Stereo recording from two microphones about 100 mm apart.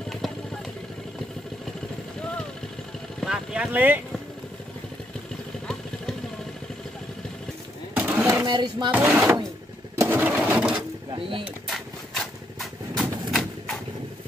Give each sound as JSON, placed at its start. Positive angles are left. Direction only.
{"t": 3.2, "sound": "vehicle", "side_deg": -5}
{"t": 7.9, "sound": "a sound", "side_deg": -15}
{"t": 8.5, "sound": "speech", "side_deg": -45}
{"t": 8.9, "sound": "speech", "side_deg": -15}
{"t": 9.9, "sound": "pigeon", "side_deg": -25}
{"t": 10.3, "sound": "sewing machine", "side_deg": -10}
{"t": 11.1, "sound": "speech", "side_deg": -60}
{"t": 11.6, "sound": "a sound", "side_deg": 5}